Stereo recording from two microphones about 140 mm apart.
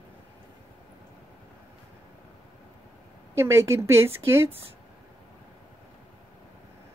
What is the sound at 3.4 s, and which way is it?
Speech, 20° right (ahead or behind).